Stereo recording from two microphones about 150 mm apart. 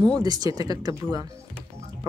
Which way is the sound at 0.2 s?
25° right (ahead or behind).